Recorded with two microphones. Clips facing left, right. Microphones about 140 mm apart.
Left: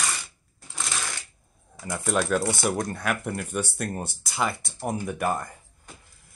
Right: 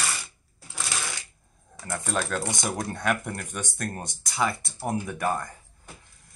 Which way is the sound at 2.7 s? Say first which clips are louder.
Even; centre (ahead or behind).